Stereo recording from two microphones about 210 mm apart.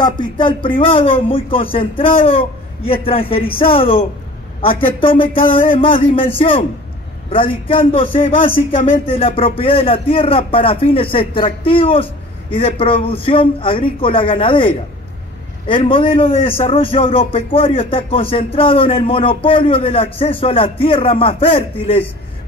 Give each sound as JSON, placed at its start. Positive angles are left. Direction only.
{"t": 0.0, "sound": "a man's voice", "side_deg": 20}